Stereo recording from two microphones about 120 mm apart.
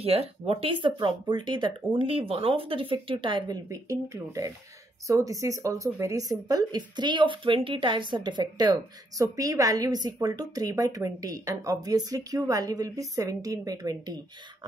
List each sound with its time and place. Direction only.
0.0 s speech: 55° right (ahead or behind)
3.7 s a woman's voice: 25° right (ahead or behind)